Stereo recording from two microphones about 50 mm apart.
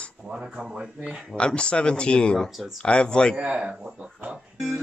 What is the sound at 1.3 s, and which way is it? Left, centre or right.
Speech, left.